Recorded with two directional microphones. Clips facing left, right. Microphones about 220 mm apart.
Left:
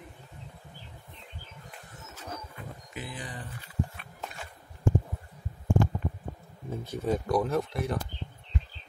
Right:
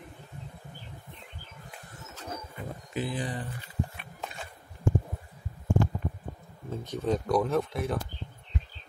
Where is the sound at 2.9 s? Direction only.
30° right (ahead or behind).